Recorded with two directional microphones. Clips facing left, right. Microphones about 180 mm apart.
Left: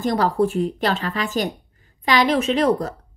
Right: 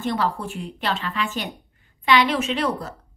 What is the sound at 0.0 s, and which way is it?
A woman's voice, 40° left (ahead or behind).